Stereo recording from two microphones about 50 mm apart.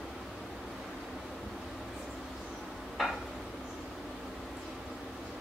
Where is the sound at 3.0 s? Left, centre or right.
Centre.